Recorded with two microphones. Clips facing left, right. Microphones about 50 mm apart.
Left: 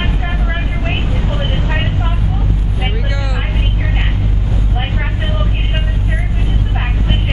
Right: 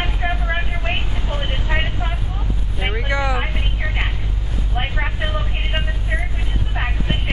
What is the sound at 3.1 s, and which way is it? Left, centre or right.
Speech, right.